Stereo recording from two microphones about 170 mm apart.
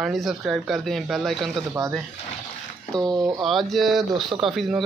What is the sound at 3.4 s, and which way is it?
Speech, centre (ahead or behind).